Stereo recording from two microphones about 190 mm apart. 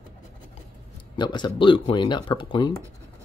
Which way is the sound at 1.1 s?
25° left (ahead or behind).